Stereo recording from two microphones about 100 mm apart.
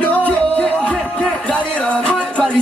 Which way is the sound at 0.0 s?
15° left (ahead or behind).